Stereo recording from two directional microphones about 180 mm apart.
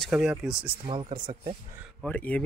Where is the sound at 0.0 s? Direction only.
5° right (ahead or behind).